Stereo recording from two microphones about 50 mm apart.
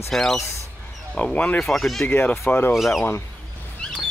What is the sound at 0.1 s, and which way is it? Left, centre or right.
Speech, centre.